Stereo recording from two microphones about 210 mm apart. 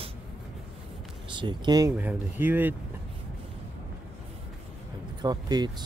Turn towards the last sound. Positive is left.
turn(degrees=-20)  # may be behind; listen again after turning